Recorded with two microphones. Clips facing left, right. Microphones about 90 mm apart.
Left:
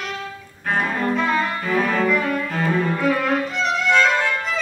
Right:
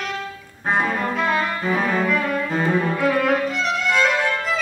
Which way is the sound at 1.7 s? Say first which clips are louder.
Left 2 dB; 15° right (ahead or behind).